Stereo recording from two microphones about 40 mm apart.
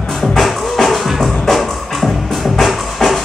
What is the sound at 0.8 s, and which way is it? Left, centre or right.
Music, centre.